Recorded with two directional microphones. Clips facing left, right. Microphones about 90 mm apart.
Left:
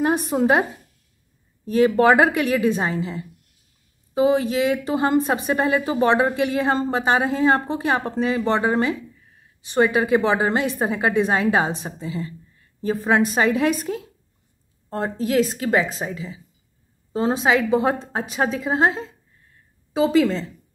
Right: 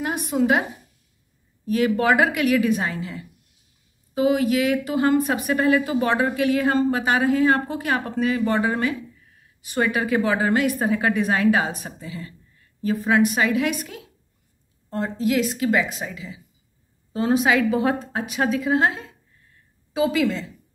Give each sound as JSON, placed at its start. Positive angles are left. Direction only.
{"t": 0.0, "sound": "a woman's voice", "side_deg": 35}
{"t": 1.7, "sound": "a woman's voice", "side_deg": 30}